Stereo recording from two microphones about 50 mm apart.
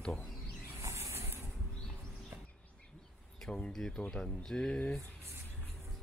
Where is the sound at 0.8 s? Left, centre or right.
Right.